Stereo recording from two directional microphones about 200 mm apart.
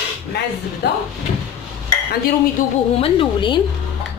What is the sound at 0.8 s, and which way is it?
Speech, 55° left (ahead or behind).